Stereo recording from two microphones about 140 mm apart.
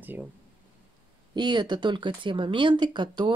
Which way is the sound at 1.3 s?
30° right (ahead or behind).